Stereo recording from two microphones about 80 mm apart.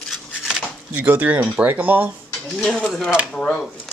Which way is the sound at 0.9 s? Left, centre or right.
Centre.